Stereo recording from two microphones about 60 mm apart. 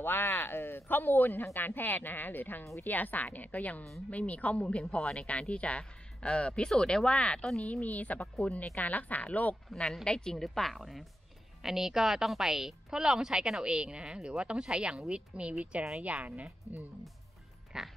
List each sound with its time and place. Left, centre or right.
0.0 s speech: left
9.7 s speech: centre
10.3 s a woman's voice: centre; by 16.8 s right
17.7 s a woman's voice: centre